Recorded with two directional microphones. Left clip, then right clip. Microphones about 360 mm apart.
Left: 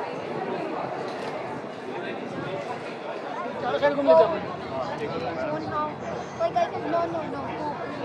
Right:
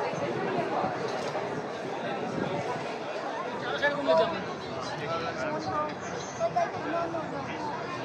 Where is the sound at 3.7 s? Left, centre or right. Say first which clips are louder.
Left 7 dB; centre.